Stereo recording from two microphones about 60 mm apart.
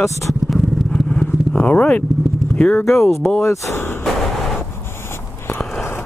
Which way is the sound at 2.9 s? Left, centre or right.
Left.